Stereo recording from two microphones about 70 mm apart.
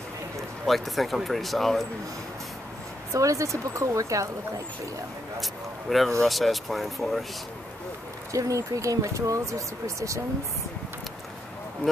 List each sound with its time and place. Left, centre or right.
0.7 s speech: centre
3.1 s speech: right
5.4 s speech: centre
8.3 s speech: right
11.8 s speech: left